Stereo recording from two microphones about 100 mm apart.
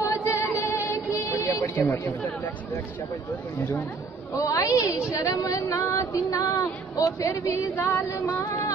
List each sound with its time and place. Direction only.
0.0 s music: 30° left (ahead or behind)
0.6 s a sound: 30° left (ahead or behind)
1.8 s speech: 20° left (ahead or behind)
4.3 s a woman's voice: 35° left (ahead or behind)
4.8 s a woman's voice: 10° right (ahead or behind)
5.1 s a woman's voice: 35° left (ahead or behind)